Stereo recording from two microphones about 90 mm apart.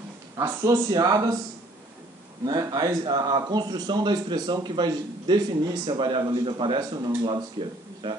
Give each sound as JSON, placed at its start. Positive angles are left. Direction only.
{"t": 0.4, "sound": "speech", "side_deg": -40}
{"t": 2.4, "sound": "a man's voice", "side_deg": -45}